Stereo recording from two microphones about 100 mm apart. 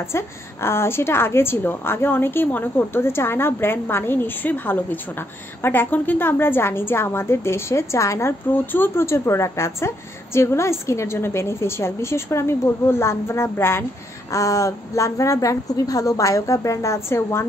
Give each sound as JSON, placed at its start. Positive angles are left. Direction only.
{"t": 0.1, "sound": "a woman's voice", "side_deg": 25}